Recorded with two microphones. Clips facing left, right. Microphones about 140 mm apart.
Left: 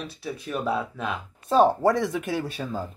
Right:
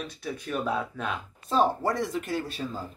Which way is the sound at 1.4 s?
55° left (ahead or behind).